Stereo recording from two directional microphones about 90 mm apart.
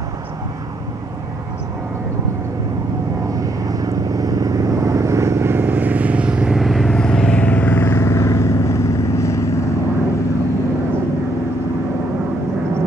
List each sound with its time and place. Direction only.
3.3 s vehicle: 40° right (ahead or behind); by 7.0 s centre (ahead or behind)
7.0 s vehicle: 10° left (ahead or behind); by 9.5 s 35° left (ahead or behind)